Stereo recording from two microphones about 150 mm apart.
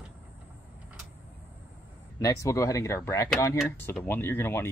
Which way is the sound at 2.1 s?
20° left (ahead or behind).